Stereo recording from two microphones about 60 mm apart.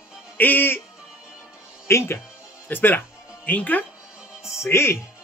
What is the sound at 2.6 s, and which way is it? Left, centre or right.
A man's voice, left.